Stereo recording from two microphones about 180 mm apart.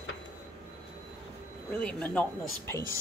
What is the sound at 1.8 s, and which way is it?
Speech, 5° left (ahead or behind).